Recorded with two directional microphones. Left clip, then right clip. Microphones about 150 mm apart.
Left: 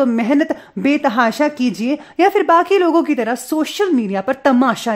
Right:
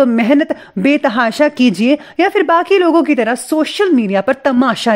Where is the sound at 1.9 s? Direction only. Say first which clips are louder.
Right 1 dB; 15° right (ahead or behind).